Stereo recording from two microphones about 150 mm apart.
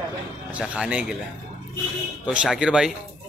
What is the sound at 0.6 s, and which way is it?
Speech, 10° right (ahead or behind).